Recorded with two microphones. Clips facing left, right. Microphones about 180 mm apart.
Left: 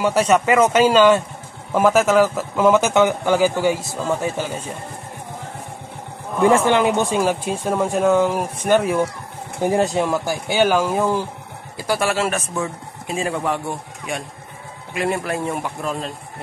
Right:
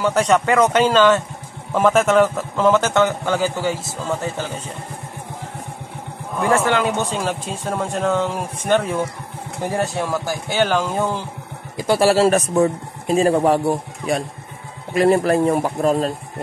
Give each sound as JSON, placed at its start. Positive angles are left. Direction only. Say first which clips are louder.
{"t": 0.0, "sound": "a man's voice", "louder": "even", "side_deg": 10}
{"t": 6.4, "sound": "a man's voice", "louder": "left 3 dB", "side_deg": 20}
{"t": 11.7, "sound": "bird", "louder": "right 4 dB", "side_deg": -20}
{"t": 12.0, "sound": "a man's voice", "louder": "right 9 dB", "side_deg": -35}